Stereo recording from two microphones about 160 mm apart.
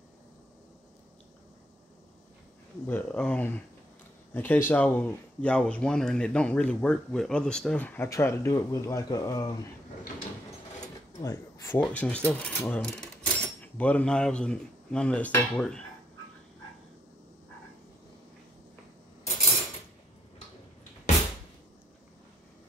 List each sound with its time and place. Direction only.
2.9 s speech: 5° left (ahead or behind); by 9.5 s 20° left (ahead or behind)
11.2 s speech: 20° left (ahead or behind)
11.9 s speech: 10° left (ahead or behind)